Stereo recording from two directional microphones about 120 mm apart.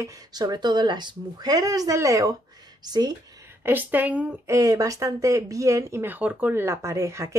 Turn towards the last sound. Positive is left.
turn(degrees=-25)  # may be behind; listen again after turning